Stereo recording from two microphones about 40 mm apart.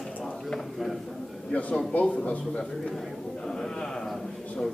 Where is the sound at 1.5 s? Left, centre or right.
Left.